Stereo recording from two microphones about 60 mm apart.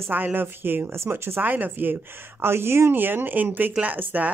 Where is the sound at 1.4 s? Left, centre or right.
Right.